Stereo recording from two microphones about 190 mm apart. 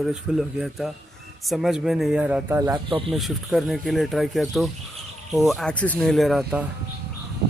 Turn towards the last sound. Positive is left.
turn(degrees=-5)  # may be behind; listen again after turning